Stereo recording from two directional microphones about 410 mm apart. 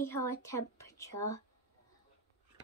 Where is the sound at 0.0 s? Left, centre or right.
Centre.